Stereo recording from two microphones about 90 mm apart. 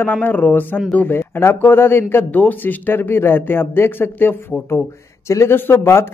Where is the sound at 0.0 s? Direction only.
20° left (ahead or behind).